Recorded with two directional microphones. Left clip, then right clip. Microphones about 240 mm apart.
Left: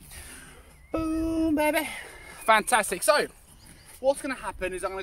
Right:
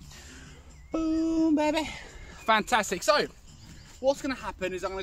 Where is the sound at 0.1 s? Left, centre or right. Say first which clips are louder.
Left 3 dB; centre.